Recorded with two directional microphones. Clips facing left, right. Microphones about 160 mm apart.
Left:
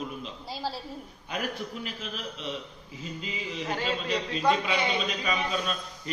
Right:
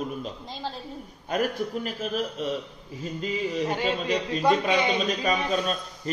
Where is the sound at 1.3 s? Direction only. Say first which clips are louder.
Right 7 dB; 45° right (ahead or behind).